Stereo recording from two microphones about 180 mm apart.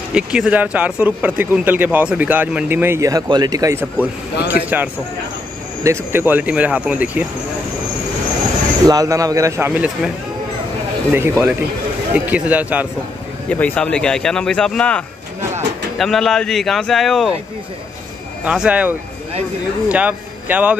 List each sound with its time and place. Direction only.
0.1 s speech: 5° right (ahead or behind)
5.9 s speech: 10° right (ahead or behind)
8.8 s speech: 20° right (ahead or behind)
9.7 s speech: 5° right (ahead or behind)
11.1 s speech: 10° right (ahead or behind)
13.5 s speech: 5° left (ahead or behind)
18.4 s a man's voice: 5° right (ahead or behind)